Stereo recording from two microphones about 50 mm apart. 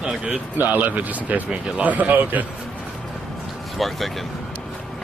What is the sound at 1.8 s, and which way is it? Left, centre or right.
Speech, right.